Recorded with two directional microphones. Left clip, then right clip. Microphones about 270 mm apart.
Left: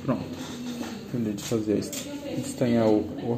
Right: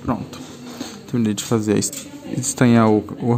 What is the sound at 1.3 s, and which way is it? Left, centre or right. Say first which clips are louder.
Speech: right 6 dB; right.